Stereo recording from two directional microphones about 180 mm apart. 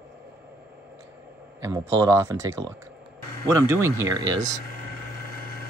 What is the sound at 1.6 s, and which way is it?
Speech, 15° right (ahead or behind).